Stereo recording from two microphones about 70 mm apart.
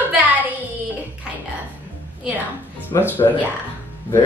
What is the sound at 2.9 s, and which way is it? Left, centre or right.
Speech, left.